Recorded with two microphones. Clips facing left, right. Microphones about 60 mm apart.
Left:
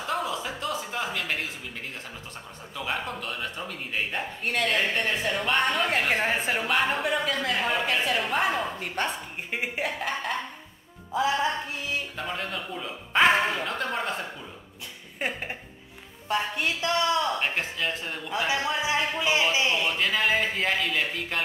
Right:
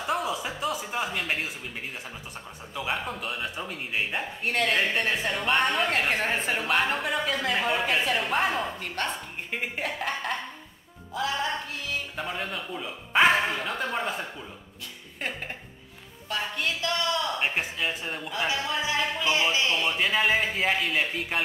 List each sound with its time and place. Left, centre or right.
0.0 s a sound: centre
2.7 s speech: centre
11.1 s music: centre
12.2 s speech: centre
15.1 s music: centre
16.3 s speech: left
17.4 s a man's voice: centre
18.5 s speech: left
19.8 s speech: centre